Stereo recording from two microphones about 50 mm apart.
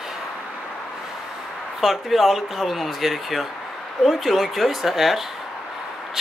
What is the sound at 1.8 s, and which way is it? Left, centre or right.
Speech, centre.